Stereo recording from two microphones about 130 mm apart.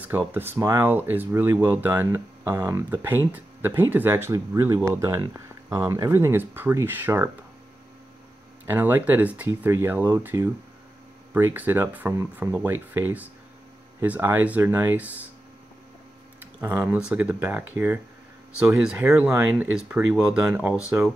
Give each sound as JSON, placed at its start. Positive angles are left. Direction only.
{"t": 0.3, "sound": "speech", "side_deg": -15}
{"t": 8.6, "sound": "speech", "side_deg": -15}
{"t": 16.6, "sound": "speech", "side_deg": -10}